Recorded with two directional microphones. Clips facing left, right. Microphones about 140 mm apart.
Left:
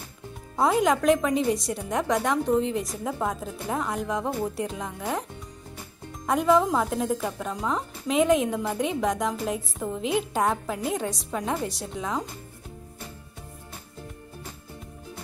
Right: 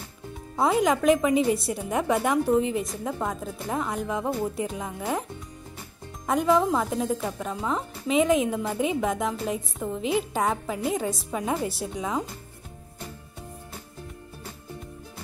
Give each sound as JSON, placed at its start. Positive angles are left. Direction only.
{"t": 0.6, "sound": "a woman's voice", "side_deg": 0}
{"t": 6.2, "sound": "a woman's voice", "side_deg": 0}